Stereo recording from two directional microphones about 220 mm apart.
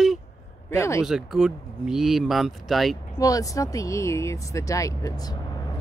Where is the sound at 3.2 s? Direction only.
15° left (ahead or behind).